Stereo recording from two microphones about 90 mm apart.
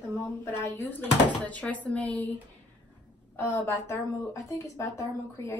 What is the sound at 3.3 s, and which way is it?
Speech, 25° left (ahead or behind).